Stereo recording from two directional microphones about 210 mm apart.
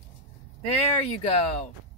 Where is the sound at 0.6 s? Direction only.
30° left (ahead or behind).